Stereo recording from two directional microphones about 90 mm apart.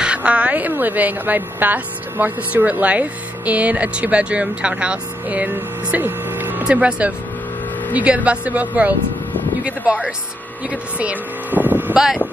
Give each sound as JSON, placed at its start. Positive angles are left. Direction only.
{"t": 0.0, "sound": "a woman's voice", "side_deg": -15}